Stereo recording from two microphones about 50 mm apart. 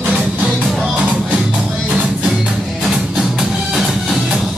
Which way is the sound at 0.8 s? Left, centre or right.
Right.